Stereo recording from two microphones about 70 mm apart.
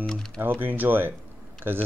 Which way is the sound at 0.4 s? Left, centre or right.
Right.